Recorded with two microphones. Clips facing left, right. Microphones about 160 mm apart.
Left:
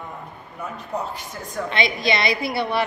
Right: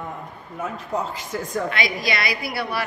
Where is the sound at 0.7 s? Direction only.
90° right.